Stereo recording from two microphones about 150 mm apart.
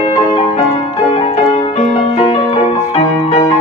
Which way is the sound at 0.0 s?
25° left (ahead or behind).